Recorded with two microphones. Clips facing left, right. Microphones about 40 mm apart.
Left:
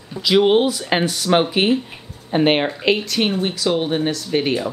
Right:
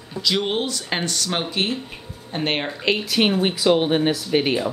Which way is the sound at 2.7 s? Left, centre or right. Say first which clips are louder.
Left 3 dB; centre.